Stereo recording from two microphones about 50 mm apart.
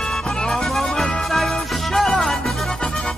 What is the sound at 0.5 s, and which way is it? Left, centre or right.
Music, centre.